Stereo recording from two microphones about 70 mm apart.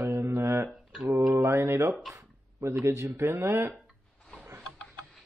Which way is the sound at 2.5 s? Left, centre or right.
Right.